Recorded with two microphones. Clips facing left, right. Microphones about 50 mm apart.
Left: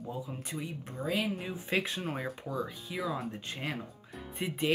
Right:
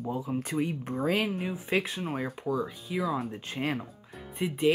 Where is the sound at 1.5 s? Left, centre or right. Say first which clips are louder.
Right 3 dB; centre.